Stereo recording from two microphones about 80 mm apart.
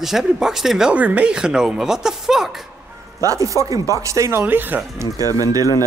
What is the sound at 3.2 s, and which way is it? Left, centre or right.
Speech, right.